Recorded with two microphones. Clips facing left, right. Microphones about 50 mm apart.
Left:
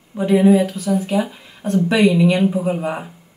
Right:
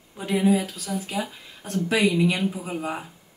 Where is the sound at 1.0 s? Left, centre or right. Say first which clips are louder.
Left 9 dB; centre.